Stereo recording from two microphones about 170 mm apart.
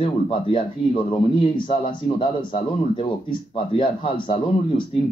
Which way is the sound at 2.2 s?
30° left (ahead or behind).